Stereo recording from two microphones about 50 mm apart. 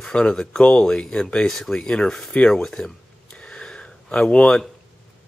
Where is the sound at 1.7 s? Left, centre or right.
Centre.